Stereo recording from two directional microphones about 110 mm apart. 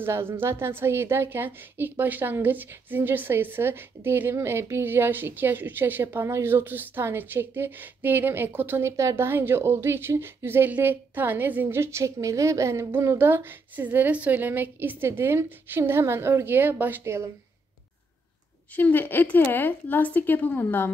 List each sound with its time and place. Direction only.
0.0 s a woman's voice: 20° right (ahead or behind)
18.8 s a woman's voice: 15° left (ahead or behind)